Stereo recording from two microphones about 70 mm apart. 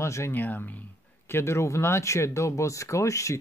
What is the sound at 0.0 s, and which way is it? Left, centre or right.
Speech, left.